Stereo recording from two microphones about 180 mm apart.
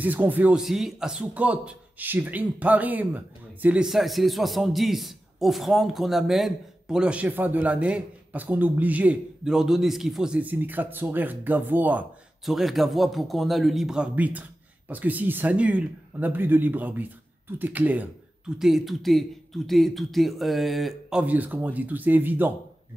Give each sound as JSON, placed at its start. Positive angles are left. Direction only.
{"t": 0.0, "sound": "a man's voice", "side_deg": -10}